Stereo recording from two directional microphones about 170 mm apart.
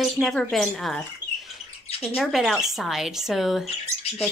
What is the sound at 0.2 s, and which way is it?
Speech, centre (ahead or behind).